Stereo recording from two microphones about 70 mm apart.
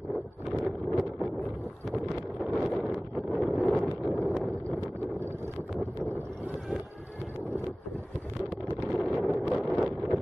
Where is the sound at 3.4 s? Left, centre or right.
Centre.